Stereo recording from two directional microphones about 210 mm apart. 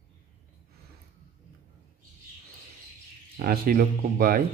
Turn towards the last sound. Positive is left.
turn(degrees=-45)  # may be behind; listen again after turning